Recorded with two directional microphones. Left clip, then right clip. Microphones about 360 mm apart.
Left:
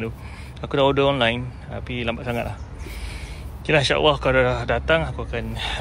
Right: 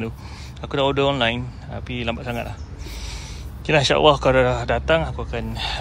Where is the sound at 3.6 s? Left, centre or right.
Centre.